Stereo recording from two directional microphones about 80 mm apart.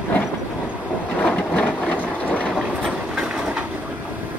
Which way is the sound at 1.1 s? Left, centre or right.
Left.